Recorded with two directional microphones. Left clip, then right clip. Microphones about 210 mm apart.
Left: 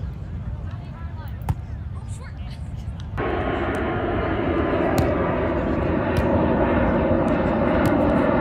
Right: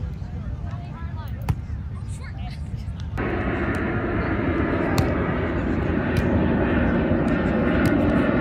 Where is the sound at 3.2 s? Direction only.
30° left (ahead or behind).